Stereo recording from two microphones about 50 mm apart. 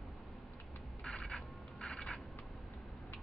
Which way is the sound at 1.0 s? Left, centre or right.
Centre.